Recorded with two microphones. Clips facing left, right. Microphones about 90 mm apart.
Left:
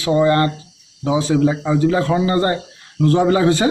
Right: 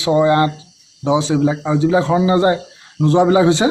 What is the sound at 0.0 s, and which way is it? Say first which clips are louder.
A man's voice: right 2 dB; 15° right (ahead or behind).